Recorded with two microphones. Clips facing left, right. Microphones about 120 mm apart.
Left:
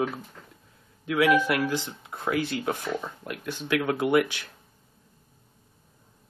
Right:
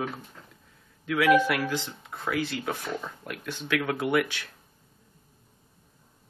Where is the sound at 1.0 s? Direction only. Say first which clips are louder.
Even; 20° left (ahead or behind).